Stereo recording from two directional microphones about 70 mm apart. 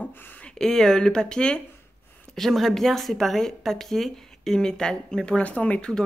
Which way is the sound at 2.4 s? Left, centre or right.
Centre.